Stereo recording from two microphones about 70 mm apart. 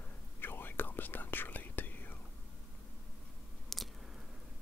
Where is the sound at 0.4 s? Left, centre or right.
Left.